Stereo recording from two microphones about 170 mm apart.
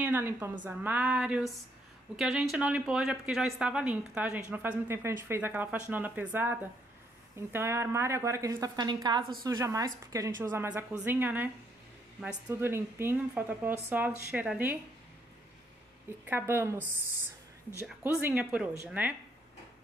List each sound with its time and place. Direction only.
0.0 s a woman's voice: 10° right (ahead or behind)
16.3 s a woman's voice: 15° right (ahead or behind)
17.8 s a woman's voice: 10° right (ahead or behind)